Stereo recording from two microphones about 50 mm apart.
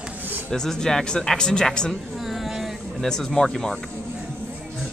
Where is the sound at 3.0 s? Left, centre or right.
Centre.